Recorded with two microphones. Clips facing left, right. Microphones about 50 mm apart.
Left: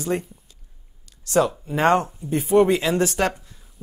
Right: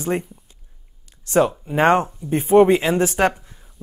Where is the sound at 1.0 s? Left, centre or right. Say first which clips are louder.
Right 2 dB; right.